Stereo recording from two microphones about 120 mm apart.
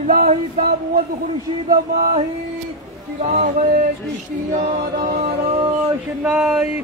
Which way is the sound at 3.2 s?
75° right (ahead or behind).